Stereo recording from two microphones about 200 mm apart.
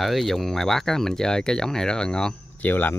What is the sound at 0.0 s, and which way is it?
Speech, centre (ahead or behind).